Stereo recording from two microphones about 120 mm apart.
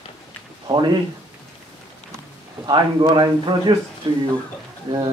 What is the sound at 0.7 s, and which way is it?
Speech, 40° right (ahead or behind).